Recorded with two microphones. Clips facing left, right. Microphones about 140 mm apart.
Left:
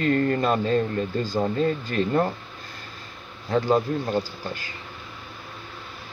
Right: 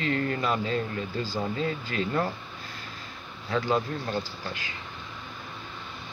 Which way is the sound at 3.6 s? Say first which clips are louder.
Left 5 dB; 35° left (ahead or behind).